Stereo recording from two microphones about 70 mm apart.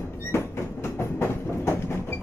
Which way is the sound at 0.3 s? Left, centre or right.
Left.